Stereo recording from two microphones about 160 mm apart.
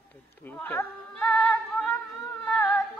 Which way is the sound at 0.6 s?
10° left (ahead or behind).